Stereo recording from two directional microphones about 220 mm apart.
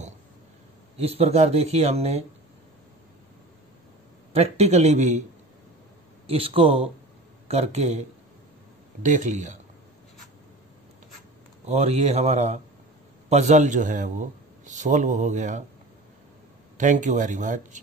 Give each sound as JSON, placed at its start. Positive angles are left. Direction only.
{"t": 0.9, "sound": "speech", "side_deg": -25}
{"t": 4.3, "sound": "speech", "side_deg": -30}
{"t": 6.2, "sound": "speech", "side_deg": -25}
{"t": 9.0, "sound": "a man's voice", "side_deg": -35}
{"t": 11.6, "sound": "a man's voice", "side_deg": -30}
{"t": 16.7, "sound": "a man's voice", "side_deg": -35}